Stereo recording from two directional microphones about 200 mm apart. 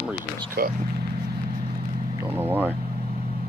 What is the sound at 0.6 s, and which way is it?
Speech, 55° right (ahead or behind).